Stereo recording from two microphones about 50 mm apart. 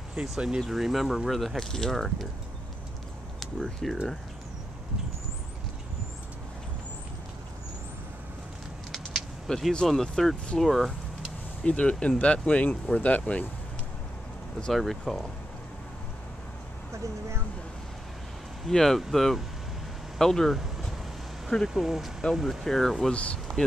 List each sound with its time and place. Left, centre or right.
0.2 s speech: centre
3.3 s speech: centre
8.9 s speech: centre
11.6 s speech: left
14.7 s speech: centre
16.9 s speech: right
18.7 s speech: centre
21.6 s speech: centre
23.1 s speech: left